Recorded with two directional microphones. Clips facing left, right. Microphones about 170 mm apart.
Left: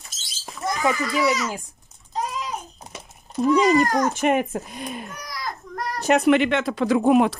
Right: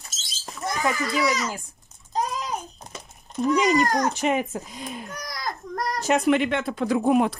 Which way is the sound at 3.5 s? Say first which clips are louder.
Left 3 dB; 30° left (ahead or behind).